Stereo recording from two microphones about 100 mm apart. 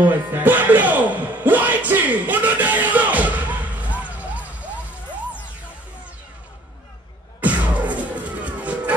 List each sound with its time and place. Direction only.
0.0 s music: 20° right (ahead or behind)
7.3 s music: 15° right (ahead or behind)